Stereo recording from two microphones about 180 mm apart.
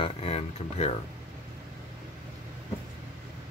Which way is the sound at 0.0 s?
35° left (ahead or behind).